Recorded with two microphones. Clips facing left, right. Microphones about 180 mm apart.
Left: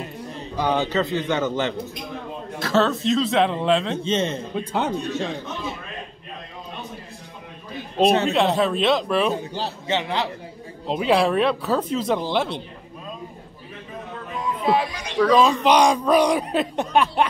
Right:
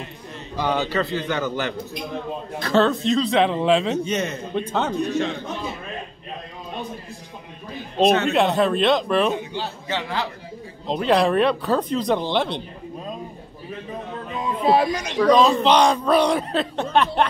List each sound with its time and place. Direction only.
0.6 s a man's voice: 20° left (ahead or behind)
2.6 s speech: centre (ahead or behind)
4.0 s a man's voice: 30° left (ahead or behind)
4.6 s speech: 10° left (ahead or behind)
8.3 s speech: centre (ahead or behind)
9.3 s a man's voice: 40° left (ahead or behind)
9.8 s a man's voice: 20° left (ahead or behind)
10.9 s speech: 5° left (ahead or behind)
14.4 s a sound: 25° right (ahead or behind)
14.8 s speech: 45° right (ahead or behind)
15.2 s speech: 5° left (ahead or behind)